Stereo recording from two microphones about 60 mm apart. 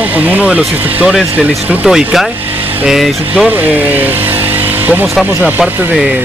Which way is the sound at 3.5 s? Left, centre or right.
Right.